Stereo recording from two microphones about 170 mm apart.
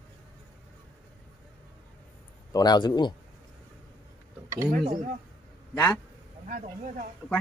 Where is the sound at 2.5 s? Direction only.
25° left (ahead or behind).